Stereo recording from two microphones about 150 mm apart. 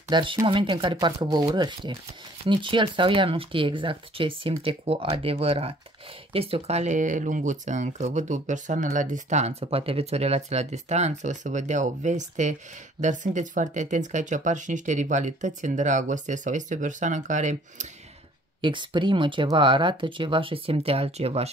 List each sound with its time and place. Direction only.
0.1 s speech: 30° right (ahead or behind); by 17.8 s 55° right (ahead or behind)
18.6 s speech: 30° right (ahead or behind)